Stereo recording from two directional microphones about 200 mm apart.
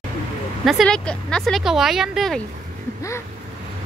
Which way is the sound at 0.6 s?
Centre (ahead or behind).